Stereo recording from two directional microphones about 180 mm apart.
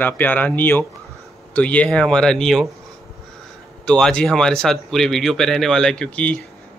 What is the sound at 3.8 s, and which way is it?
Speech, 5° left (ahead or behind).